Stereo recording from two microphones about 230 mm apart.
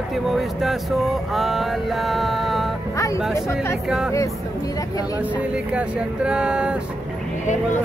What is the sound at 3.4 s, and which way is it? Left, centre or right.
Speech, centre.